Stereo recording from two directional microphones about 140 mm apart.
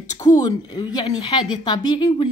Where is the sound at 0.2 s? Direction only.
25° left (ahead or behind).